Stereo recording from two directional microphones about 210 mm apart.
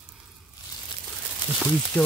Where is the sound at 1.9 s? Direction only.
5° left (ahead or behind).